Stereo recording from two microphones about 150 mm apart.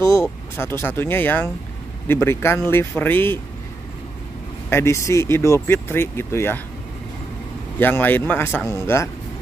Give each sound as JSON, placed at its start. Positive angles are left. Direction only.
{"t": 0.0, "sound": "speech", "side_deg": 20}
{"t": 4.6, "sound": "speech", "side_deg": 15}
{"t": 7.8, "sound": "speech", "side_deg": 15}